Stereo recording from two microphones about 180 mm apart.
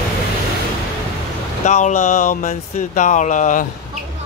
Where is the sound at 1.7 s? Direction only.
40° left (ahead or behind).